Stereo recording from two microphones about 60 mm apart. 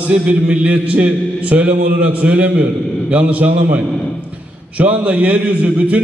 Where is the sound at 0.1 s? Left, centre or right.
Right.